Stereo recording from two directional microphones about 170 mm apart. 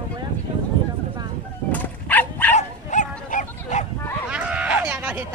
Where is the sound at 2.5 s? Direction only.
45° left (ahead or behind).